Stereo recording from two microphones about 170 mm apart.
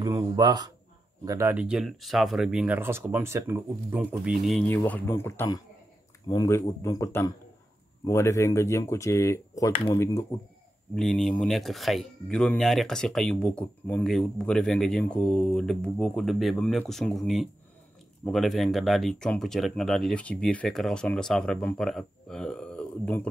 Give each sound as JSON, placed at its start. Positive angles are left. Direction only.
{"t": 0.0, "sound": "speech", "side_deg": -20}
{"t": 4.6, "sound": "speech", "side_deg": 10}
{"t": 11.0, "sound": "speech", "side_deg": 0}